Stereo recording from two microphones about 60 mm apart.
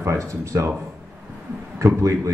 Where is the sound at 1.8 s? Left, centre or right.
Right.